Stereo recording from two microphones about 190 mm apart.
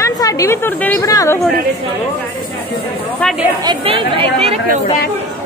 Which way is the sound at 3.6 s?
25° right (ahead or behind).